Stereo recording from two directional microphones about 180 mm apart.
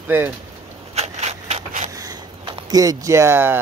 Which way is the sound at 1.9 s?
20° right (ahead or behind).